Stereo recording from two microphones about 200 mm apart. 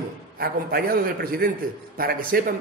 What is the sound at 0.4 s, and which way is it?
A man's voice, 50° right (ahead or behind).